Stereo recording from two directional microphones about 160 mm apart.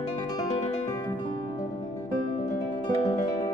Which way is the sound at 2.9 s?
25° left (ahead or behind).